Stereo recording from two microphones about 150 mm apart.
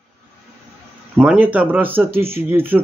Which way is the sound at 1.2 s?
10° right (ahead or behind).